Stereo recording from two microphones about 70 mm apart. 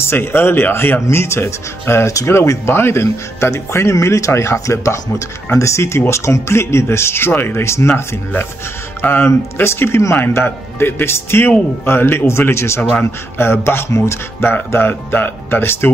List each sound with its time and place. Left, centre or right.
0.0 s speech: left
1.0 s speech: left
9.0 s speech: left